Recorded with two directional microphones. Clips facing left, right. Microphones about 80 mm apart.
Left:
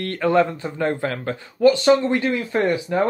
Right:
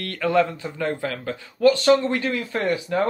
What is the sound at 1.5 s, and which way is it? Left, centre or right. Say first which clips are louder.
Speech: left 2 dB; centre.